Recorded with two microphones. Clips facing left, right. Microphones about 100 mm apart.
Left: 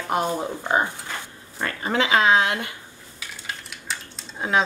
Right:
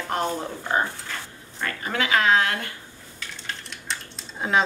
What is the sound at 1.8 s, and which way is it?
Speech, 25° left (ahead or behind).